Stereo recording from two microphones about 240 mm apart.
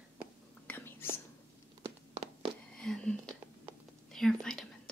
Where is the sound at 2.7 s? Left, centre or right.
Centre.